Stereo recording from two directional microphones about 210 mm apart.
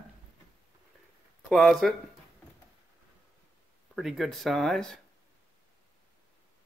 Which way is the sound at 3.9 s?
Centre (ahead or behind).